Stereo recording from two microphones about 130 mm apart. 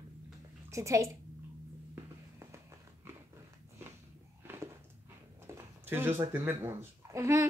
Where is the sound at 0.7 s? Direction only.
25° right (ahead or behind).